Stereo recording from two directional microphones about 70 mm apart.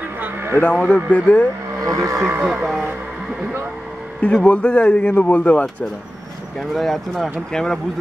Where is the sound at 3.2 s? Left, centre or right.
Centre.